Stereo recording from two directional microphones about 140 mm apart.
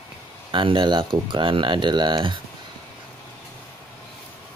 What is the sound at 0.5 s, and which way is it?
Speech, 35° right (ahead or behind).